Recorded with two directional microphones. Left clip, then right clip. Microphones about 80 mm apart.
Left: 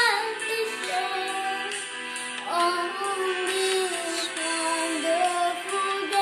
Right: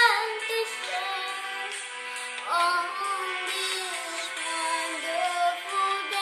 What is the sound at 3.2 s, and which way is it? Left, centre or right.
Music, left.